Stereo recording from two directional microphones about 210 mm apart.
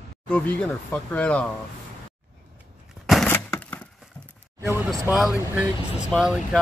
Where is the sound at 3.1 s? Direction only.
5° left (ahead or behind).